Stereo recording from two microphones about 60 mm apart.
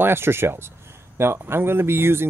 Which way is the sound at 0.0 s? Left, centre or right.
Right.